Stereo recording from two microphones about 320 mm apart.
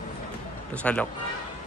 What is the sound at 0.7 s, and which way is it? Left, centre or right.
Speech, centre.